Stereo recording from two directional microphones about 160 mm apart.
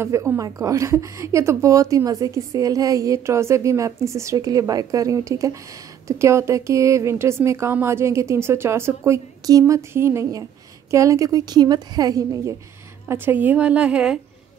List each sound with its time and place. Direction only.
0.0 s a woman's voice: 15° right (ahead or behind)
13.1 s a woman's voice: 10° right (ahead or behind)